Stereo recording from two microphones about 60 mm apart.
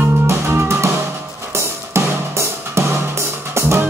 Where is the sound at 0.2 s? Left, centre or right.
Right.